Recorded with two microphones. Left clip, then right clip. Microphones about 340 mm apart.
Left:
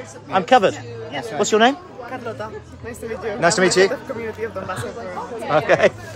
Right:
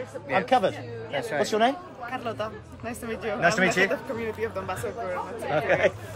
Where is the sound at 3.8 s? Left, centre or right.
Centre.